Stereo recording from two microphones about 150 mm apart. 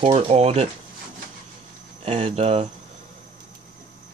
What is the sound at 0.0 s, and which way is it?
Speech, 45° right (ahead or behind).